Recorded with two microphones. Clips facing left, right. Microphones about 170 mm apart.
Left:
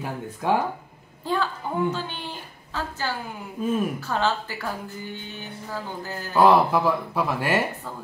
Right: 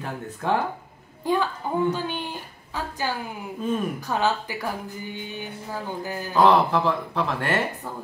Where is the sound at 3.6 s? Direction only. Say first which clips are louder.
Left 1 dB; 10° left (ahead or behind).